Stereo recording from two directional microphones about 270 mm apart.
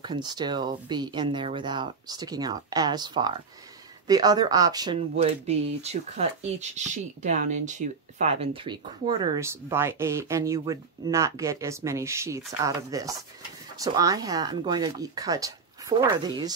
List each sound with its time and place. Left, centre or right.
0.0 s speech: centre